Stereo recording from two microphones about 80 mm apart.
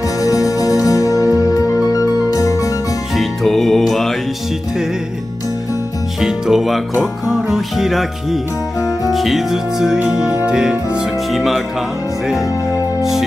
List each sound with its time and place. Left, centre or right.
0.2 s music: left
3.2 s music: centre
6.2 s music: centre